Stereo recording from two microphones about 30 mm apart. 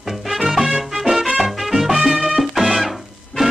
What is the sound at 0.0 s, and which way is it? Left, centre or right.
Music, centre.